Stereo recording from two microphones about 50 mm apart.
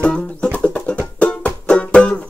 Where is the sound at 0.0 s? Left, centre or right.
Left.